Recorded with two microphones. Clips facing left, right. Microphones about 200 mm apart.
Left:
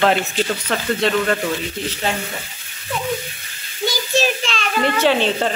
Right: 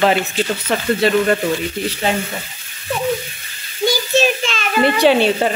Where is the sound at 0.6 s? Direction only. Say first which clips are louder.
Right 3 dB; 10° right (ahead or behind).